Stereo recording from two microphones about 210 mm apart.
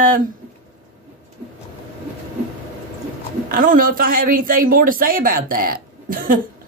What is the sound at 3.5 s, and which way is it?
Speech, 40° right (ahead or behind).